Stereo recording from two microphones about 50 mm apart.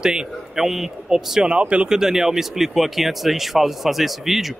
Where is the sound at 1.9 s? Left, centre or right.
Centre.